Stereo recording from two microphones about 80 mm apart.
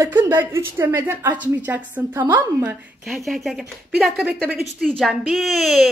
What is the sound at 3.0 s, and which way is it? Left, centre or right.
Speech, centre.